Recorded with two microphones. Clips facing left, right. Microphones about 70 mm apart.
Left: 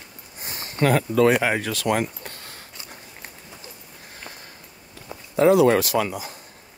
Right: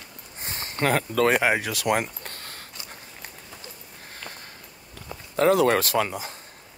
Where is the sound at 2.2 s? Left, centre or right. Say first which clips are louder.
Even; right.